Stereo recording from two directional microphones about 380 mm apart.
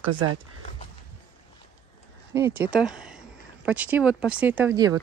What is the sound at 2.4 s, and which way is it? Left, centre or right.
Speech, centre.